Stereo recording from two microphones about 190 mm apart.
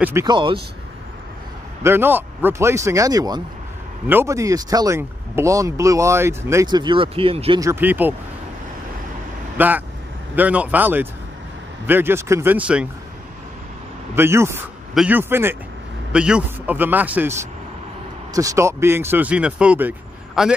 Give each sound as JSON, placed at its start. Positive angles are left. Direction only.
{"t": 0.0, "sound": "speech", "side_deg": -15}
{"t": 1.8, "sound": "speech", "side_deg": -10}
{"t": 7.6, "sound": "speech", "side_deg": -10}
{"t": 9.6, "sound": "speech", "side_deg": -10}
{"t": 14.1, "sound": "a man's voice", "side_deg": -15}